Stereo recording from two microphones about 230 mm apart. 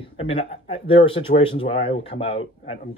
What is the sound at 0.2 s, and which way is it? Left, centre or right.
Speech, left.